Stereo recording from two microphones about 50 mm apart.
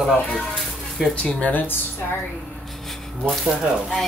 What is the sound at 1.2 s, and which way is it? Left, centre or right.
Speech, left.